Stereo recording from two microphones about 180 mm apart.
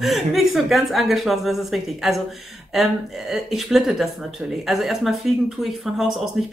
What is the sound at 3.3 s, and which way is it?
Speech, centre (ahead or behind).